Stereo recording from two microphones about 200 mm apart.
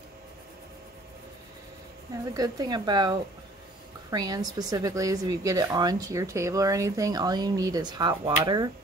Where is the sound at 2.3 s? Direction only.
20° right (ahead or behind).